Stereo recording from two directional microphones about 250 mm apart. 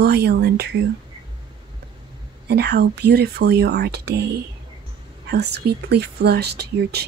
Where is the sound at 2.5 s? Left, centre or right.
Right.